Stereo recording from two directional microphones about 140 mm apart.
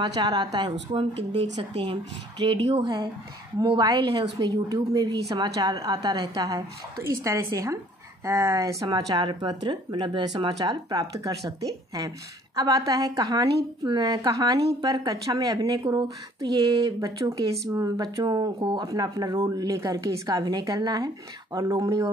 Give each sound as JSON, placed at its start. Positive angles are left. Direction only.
{"t": 0.0, "sound": "a woman's voice", "side_deg": -30}
{"t": 0.7, "sound": "a woman's voice", "side_deg": -45}